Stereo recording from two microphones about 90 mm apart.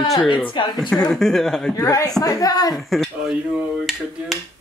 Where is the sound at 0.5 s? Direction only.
55° left (ahead or behind).